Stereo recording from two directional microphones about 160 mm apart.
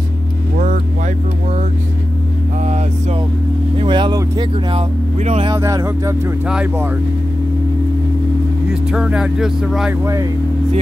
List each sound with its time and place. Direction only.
2.6 s a sound: 45° right (ahead or behind)
3.7 s vehicle: 30° right (ahead or behind)
5.5 s speech: 20° right (ahead or behind)
8.9 s speech: 5° right (ahead or behind)
10.0 s speech: 20° right (ahead or behind)